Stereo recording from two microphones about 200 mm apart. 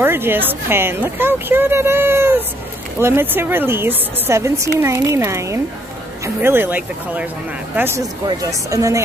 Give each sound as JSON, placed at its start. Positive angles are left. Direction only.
{"t": 0.0, "sound": "a woman's voice", "side_deg": -10}